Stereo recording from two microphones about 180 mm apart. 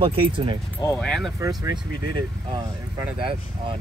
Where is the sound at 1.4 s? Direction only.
20° right (ahead or behind).